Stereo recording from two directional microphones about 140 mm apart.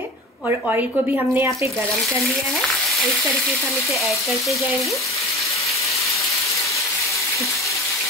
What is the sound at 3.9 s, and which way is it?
Speech, centre (ahead or behind).